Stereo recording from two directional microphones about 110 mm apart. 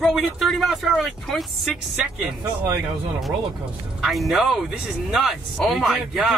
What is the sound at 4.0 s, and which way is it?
Speech, centre (ahead or behind).